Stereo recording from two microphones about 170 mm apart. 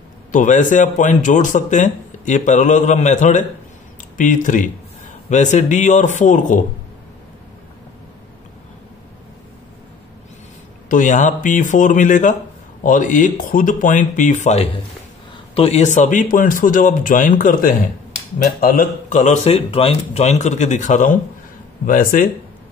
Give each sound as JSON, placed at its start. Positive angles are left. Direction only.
{"t": 0.3, "sound": "speech", "side_deg": 45}
{"t": 10.9, "sound": "speech", "side_deg": 50}